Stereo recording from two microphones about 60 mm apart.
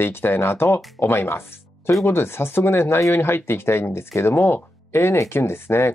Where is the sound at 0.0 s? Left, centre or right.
Left.